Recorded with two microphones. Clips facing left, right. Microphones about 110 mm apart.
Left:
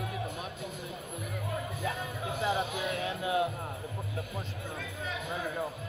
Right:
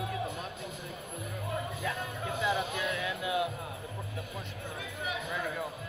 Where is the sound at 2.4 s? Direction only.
30° left (ahead or behind).